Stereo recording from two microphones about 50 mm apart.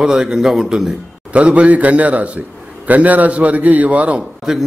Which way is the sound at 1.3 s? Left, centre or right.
Right.